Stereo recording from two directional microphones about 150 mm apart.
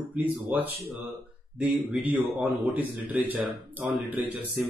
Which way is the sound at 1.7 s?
Centre (ahead or behind).